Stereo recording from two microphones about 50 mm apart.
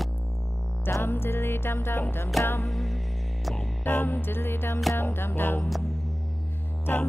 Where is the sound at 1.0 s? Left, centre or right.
Left.